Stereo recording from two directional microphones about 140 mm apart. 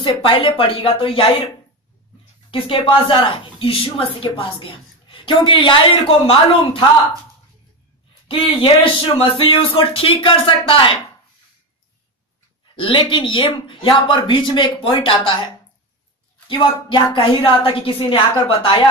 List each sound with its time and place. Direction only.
0.0 s speech: 40° left (ahead or behind)
2.5 s speech: 40° left (ahead or behind)
8.3 s speech: 40° left (ahead or behind)
12.7 s speech: 40° left (ahead or behind)
16.4 s speech: 35° left (ahead or behind)